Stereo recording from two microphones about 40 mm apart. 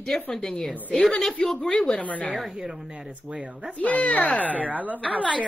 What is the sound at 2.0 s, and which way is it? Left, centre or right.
Speech, left.